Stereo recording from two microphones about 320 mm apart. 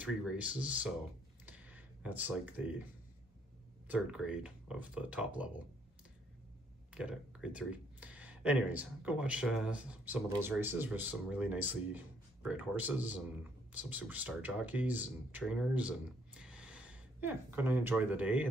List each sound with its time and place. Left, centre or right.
0.0 s speech: centre
1.4 s computer keyboard: centre
3.8 s speech: centre
6.9 s speech: centre